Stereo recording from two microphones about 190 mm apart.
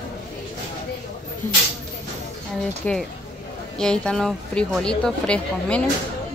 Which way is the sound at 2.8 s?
5° left (ahead or behind).